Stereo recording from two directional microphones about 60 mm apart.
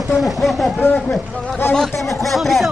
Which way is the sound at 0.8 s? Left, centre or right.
Left.